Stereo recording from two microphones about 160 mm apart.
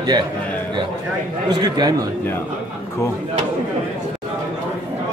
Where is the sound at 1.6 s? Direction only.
25° right (ahead or behind).